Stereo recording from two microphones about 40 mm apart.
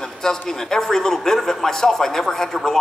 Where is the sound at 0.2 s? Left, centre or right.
Centre.